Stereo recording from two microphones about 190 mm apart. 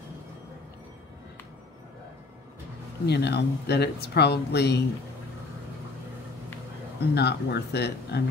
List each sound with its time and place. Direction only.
3.1 s speech: 60° left (ahead or behind)
7.0 s speech: 60° left (ahead or behind)